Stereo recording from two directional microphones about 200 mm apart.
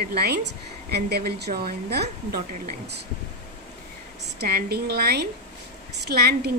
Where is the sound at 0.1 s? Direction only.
50° right (ahead or behind).